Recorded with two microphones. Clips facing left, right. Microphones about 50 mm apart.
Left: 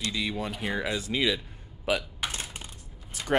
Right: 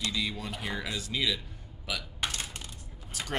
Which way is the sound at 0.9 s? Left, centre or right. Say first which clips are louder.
Left 4 dB; left.